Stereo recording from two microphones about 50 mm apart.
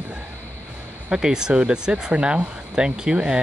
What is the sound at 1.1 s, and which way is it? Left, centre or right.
Speech, centre.